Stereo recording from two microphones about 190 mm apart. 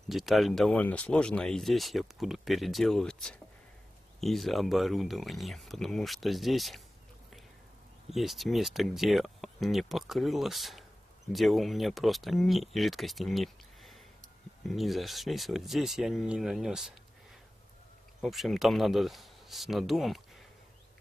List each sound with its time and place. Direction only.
0.1 s speech: centre (ahead or behind)
8.1 s speech: centre (ahead or behind)
18.2 s speech: centre (ahead or behind)